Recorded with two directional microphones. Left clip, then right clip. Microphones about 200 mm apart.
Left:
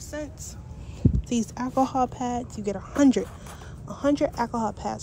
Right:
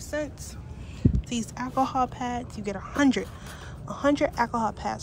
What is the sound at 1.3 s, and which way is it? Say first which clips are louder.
A woman's voice: left 4 dB; 30° left (ahead or behind).